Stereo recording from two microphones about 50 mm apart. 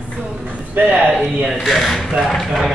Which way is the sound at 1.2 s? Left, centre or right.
Centre.